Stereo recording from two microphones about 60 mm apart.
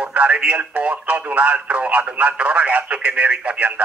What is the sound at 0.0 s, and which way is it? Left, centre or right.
Speech, right.